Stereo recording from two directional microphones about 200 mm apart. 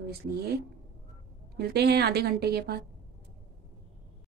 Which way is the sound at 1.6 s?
55° right (ahead or behind).